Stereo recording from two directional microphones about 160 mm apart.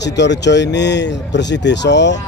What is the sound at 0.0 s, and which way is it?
A man's voice, 90° left.